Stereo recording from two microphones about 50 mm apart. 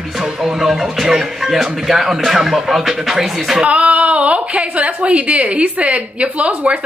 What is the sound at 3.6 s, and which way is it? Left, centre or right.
A woman's voice, right.